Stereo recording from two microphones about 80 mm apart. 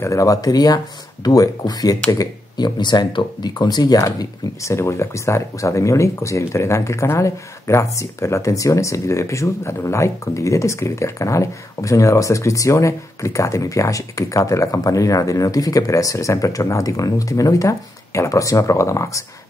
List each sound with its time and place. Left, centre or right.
0.0 s speech: left
2.1 s speech: left
4.0 s speech: left